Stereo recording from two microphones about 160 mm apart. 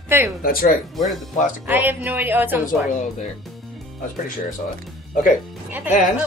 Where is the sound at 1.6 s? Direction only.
10° right (ahead or behind).